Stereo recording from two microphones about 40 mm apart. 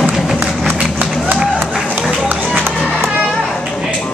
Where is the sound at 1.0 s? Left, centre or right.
Right.